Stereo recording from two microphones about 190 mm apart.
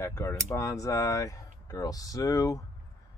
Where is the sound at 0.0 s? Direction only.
15° left (ahead or behind).